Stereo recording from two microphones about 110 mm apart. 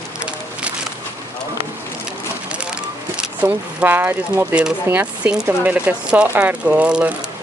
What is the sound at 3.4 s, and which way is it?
Speech, 15° right (ahead or behind).